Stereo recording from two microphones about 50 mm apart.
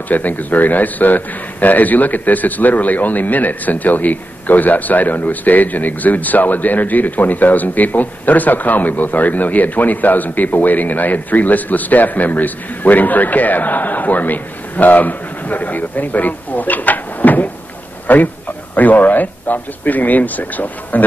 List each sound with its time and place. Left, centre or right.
0.1 s a man's voice: left